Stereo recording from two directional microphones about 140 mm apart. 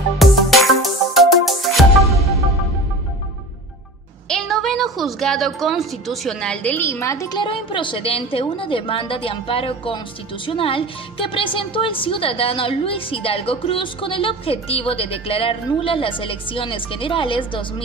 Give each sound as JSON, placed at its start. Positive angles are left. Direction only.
{"t": 0.2, "sound": "music", "side_deg": 0}
{"t": 4.3, "sound": "a woman's voice", "side_deg": 0}